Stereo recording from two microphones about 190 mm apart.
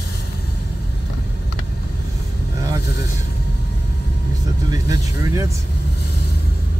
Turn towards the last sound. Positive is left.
turn(degrees=-20)  # may be behind; listen again after turning